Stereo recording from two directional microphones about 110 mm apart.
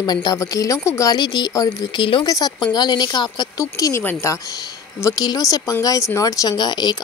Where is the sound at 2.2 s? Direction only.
35° left (ahead or behind).